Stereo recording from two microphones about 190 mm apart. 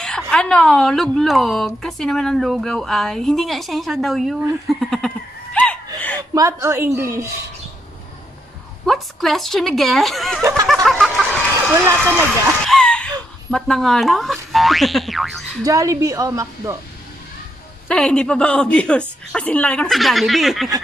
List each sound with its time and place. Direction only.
0.0 s a woman's voice: 5° left (ahead or behind)
5.9 s chuckle: 10° left (ahead or behind)
6.3 s a woman's voice: 15° right (ahead or behind)
8.8 s a woman's voice: centre (ahead or behind)
10.7 s a sound: centre (ahead or behind)
11.7 s a woman's voice: 10° right (ahead or behind)
12.6 s a sound: 5° left (ahead or behind)
15.6 s a woman's voice: 15° right (ahead or behind)
17.8 s a woman's voice: 5° left (ahead or behind)